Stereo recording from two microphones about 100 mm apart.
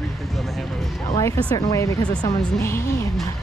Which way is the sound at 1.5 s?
35° left (ahead or behind).